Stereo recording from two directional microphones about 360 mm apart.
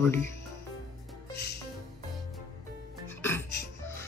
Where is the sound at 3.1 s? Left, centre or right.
Centre.